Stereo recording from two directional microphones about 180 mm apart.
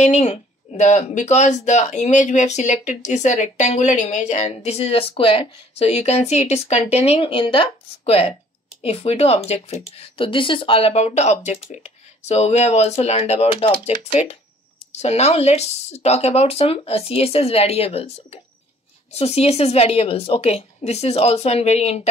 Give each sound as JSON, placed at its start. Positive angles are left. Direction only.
{"t": 0.0, "sound": "speech", "side_deg": 40}